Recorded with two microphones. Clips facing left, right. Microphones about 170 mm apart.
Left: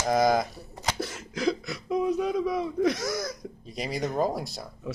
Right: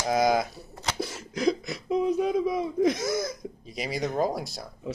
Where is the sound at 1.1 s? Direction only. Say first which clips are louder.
Right 4 dB; 40° right (ahead or behind).